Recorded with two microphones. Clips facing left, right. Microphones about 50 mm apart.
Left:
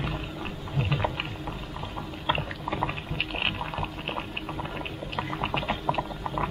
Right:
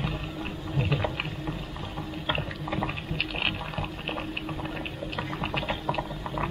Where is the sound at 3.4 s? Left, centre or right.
Centre.